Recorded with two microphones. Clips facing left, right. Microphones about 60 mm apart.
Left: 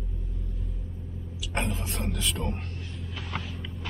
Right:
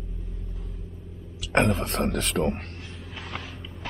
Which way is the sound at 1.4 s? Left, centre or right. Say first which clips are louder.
Right 9 dB; right.